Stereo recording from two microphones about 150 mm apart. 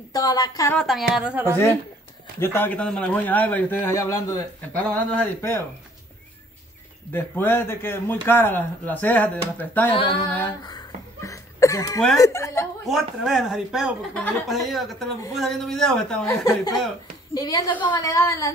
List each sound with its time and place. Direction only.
0.1 s a woman's voice: 25° left (ahead or behind)
0.7 s a woman's voice: centre (ahead or behind)
2.4 s a man's voice: 15° left (ahead or behind)
4.7 s a man's voice: 10° left (ahead or behind)
7.1 s a man's voice: 15° left (ahead or behind)
10.6 s a sound: 25° left (ahead or behind)
12.2 s a woman's voice: 20° left (ahead or behind)
12.8 s a woman's voice: centre (ahead or behind)
17.3 s a woman's voice: 25° left (ahead or behind)